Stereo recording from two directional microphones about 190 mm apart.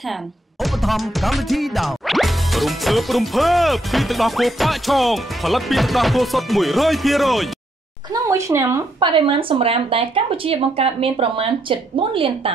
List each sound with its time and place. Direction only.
0.1 s speech: centre (ahead or behind)
8.1 s a woman's voice: 15° right (ahead or behind)
9.1 s speech: 30° right (ahead or behind)